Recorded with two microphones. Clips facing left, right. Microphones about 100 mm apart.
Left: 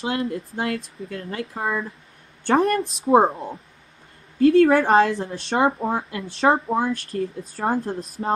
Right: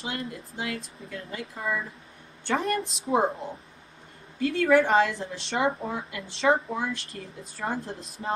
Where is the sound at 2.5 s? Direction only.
35° left (ahead or behind).